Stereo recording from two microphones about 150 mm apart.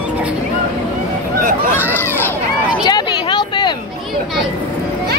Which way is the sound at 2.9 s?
30° left (ahead or behind).